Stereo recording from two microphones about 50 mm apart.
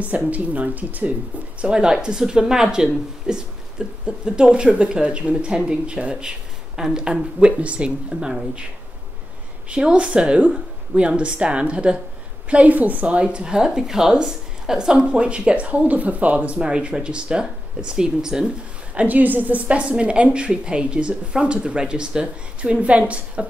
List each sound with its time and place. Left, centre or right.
0.3 s speech: right
1.6 s speech: centre
9.7 s speech: right
18.9 s speech: right